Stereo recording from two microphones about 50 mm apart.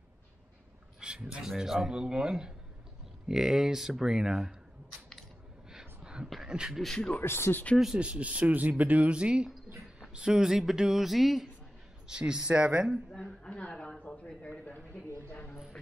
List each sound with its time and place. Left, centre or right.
1.0 s speech: centre
5.7 s a sound: centre
6.4 s speech: centre
6.7 s speech: centre
7.2 s speech: left
8.0 s speech: right; by 11.4 s centre
12.1 s speech: centre
13.1 s a sound: centre
15.2 s a sound: left